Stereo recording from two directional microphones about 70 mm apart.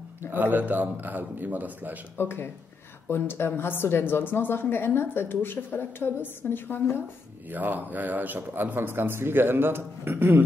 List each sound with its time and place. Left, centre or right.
0.3 s speech: right
2.1 s a woman's voice: left
7.4 s a man's voice: right